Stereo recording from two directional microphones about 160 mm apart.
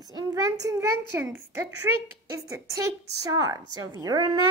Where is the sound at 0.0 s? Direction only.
25° right (ahead or behind).